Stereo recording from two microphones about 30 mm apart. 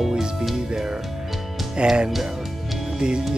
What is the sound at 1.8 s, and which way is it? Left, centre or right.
Speech, right.